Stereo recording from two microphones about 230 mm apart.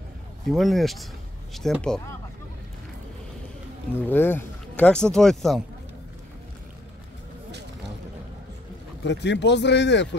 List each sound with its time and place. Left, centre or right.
0.5 s speech: centre
4.0 s speech: centre
9.0 s speech: left